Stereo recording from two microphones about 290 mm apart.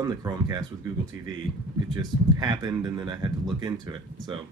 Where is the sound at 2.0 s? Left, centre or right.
Centre.